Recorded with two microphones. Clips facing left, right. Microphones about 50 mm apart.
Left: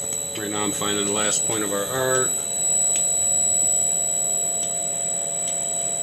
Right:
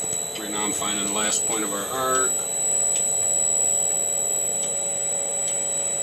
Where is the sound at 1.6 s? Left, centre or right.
Centre.